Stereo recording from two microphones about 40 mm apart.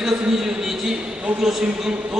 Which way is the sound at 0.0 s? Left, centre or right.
Centre.